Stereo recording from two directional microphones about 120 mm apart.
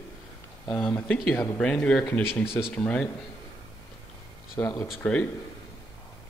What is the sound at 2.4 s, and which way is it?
Speech, 5° right (ahead or behind).